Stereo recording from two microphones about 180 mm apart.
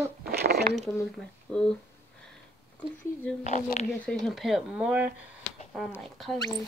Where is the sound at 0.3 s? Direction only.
60° right (ahead or behind).